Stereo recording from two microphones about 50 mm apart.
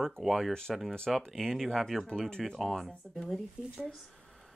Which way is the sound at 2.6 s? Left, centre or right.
Centre.